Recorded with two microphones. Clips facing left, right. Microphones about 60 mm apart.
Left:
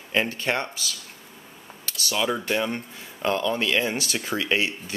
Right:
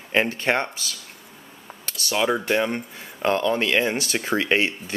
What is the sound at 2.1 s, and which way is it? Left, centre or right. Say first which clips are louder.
Speech: right 4 dB; centre.